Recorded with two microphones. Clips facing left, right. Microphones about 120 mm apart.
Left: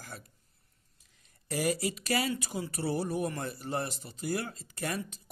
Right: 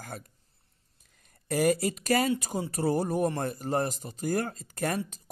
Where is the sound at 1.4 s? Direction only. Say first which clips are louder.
Right 6 dB; 50° right (ahead or behind).